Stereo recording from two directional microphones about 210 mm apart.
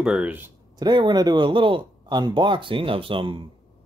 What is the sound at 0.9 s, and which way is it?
Speech, 20° right (ahead or behind).